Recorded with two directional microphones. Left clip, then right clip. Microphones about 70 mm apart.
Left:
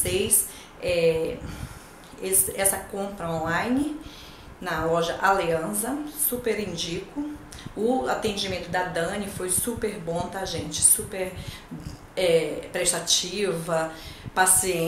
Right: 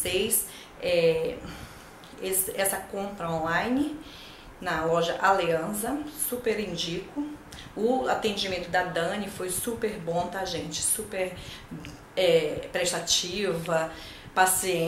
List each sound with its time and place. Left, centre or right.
0.0 s a woman's voice: centre